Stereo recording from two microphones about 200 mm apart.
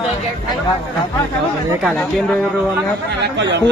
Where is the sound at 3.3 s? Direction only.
60° right (ahead or behind).